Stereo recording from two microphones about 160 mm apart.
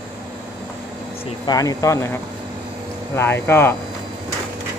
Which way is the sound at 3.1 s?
15° left (ahead or behind).